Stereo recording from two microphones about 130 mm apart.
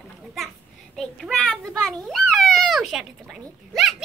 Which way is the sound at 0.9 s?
Centre (ahead or behind).